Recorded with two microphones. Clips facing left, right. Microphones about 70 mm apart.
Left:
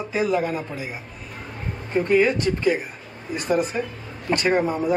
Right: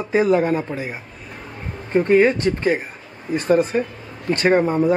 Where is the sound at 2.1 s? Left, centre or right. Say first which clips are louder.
Right 3 dB; right.